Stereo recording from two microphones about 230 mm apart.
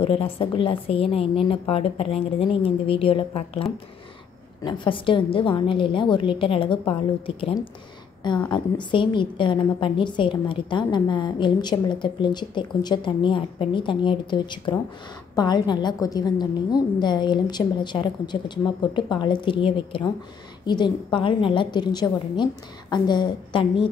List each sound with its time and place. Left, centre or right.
0.0 s a woman's voice: left
4.6 s a woman's voice: left